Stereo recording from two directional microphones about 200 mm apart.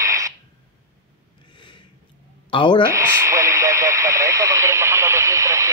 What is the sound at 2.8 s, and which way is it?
Radio, 10° right (ahead or behind).